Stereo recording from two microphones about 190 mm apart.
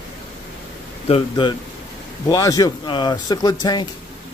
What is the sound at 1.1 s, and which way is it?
Speech, 25° left (ahead or behind).